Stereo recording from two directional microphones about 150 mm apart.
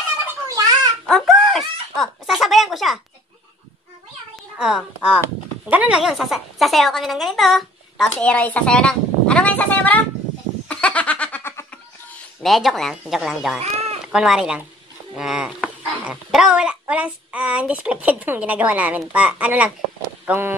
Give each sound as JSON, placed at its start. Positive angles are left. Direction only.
{"t": 1.0, "sound": "crying", "side_deg": 0}
{"t": 2.0, "sound": "speech", "side_deg": 0}
{"t": 4.6, "sound": "a woman's voice", "side_deg": -5}
{"t": 10.7, "sound": "a sound", "side_deg": 10}
{"t": 12.4, "sound": "speech", "side_deg": 0}
{"t": 13.6, "sound": "a sound", "side_deg": -45}
{"t": 14.1, "sound": "a child's voice", "side_deg": -5}